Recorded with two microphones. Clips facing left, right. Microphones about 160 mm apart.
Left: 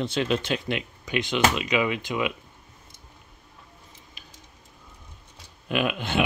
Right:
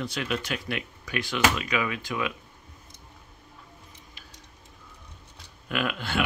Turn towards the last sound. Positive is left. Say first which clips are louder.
# left 3 dB
turn(degrees=20)  # may be behind; listen again after turning